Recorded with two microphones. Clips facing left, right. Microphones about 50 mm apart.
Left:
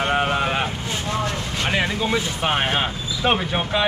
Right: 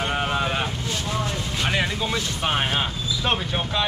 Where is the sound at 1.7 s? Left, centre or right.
Centre.